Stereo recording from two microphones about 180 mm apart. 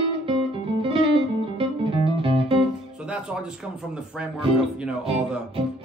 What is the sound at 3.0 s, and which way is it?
Music, 5° right (ahead or behind).